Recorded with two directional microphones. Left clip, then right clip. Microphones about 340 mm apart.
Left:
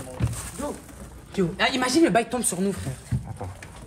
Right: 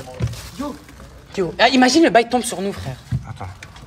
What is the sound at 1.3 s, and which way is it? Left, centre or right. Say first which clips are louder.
A woman's voice: right 9 dB; right.